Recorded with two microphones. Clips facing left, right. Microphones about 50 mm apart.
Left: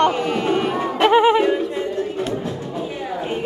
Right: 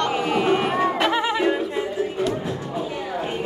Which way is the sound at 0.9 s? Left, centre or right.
Left.